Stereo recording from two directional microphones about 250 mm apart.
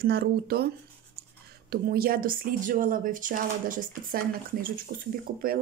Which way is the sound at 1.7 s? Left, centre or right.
Right.